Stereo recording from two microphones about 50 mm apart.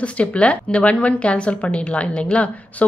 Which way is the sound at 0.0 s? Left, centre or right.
Left.